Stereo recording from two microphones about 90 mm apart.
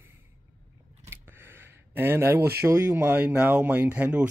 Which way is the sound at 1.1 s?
25° right (ahead or behind).